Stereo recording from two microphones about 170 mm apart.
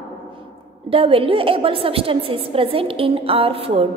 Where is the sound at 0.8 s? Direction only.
35° right (ahead or behind).